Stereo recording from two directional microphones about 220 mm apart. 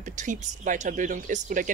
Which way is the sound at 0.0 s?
35° right (ahead or behind).